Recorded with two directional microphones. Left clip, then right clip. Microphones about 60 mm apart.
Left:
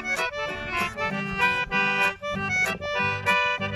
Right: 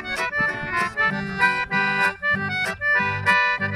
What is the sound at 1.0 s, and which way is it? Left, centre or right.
Accordion, left.